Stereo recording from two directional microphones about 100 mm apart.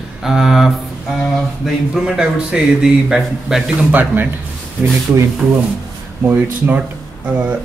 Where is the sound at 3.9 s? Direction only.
20° right (ahead or behind).